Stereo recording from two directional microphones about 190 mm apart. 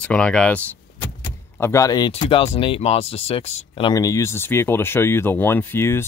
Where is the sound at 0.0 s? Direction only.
5° left (ahead or behind).